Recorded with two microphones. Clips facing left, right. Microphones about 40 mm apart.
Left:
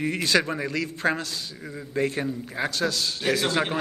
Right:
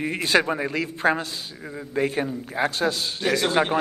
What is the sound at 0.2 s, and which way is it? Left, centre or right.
A man's voice, right.